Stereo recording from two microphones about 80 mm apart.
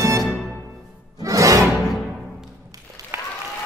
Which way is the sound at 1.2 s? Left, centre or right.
Right.